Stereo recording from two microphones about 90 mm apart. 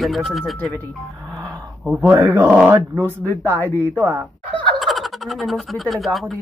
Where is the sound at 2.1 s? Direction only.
30° right (ahead or behind).